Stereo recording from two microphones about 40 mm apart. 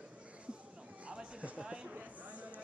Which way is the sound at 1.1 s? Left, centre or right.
Right.